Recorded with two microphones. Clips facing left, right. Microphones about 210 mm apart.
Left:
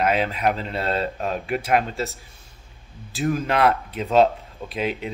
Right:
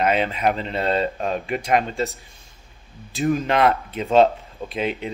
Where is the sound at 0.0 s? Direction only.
Centre (ahead or behind).